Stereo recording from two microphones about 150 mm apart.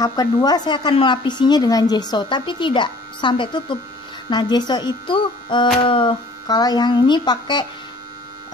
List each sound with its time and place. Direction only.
0.0 s a woman's voice: 25° left (ahead or behind)